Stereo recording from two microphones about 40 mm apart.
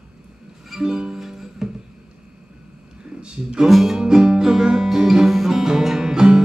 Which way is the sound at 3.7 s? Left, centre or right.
Centre.